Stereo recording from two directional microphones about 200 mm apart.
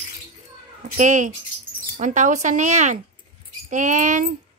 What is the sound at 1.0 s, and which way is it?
Speech, 40° right (ahead or behind).